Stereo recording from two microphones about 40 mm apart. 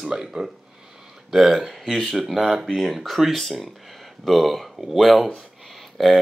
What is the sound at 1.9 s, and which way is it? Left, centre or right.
Speech, centre.